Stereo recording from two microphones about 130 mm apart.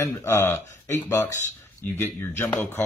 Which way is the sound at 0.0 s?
20° left (ahead or behind).